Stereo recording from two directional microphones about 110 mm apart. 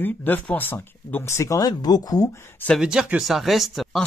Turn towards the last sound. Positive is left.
turn(degrees=0)  # may be behind; listen again after turning